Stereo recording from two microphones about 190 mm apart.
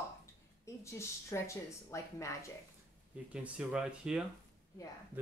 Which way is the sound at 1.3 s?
15° left (ahead or behind).